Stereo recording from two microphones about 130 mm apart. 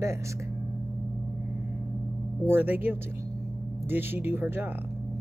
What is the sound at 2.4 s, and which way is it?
Speech, 15° right (ahead or behind).